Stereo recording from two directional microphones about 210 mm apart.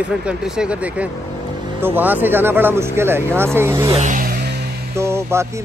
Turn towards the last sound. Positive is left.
turn(degrees=-10)  # may be behind; listen again after turning